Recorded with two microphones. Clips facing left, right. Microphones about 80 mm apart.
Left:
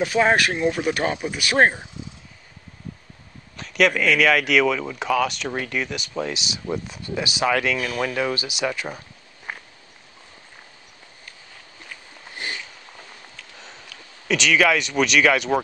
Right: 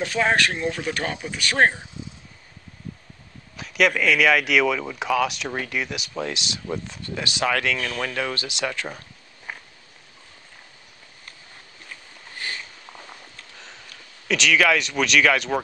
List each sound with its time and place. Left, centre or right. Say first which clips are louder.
0.0 s speech: left 3 dB; centre
3.5 s speech: left 1 dB; centre
13.9 s a sound: left 2 dB; right
14.2 s speech: left 1 dB; centre